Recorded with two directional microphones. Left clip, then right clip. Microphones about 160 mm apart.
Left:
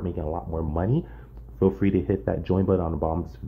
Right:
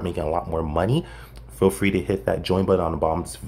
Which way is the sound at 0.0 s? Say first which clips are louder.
Right 6 dB; 20° right (ahead or behind).